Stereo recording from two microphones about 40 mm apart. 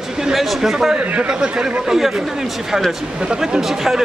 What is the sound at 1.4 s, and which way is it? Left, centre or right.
Speech, right.